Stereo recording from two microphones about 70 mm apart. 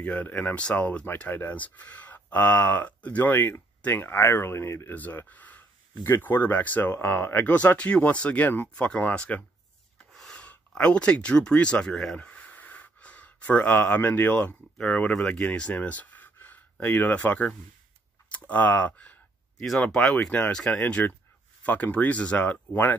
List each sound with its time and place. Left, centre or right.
0.0 s speech: left
4.9 s speech: left
6.0 s speech: left
7.5 s speech: centre
9.9 s a sound: centre
10.4 s speech: centre
12.2 s speech: left
19.8 s speech: centre
20.2 s speech: left